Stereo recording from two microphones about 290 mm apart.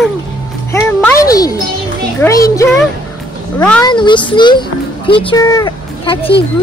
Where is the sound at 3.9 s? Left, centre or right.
Centre.